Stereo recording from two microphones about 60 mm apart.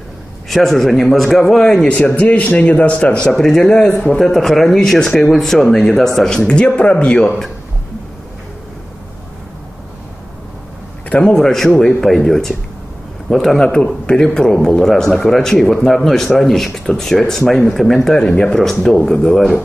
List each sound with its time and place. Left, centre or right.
0.5 s speech: centre
1.9 s speech: left
3.3 s a man's voice: centre
7.2 s a man's voice: centre
11.1 s a man's voice: centre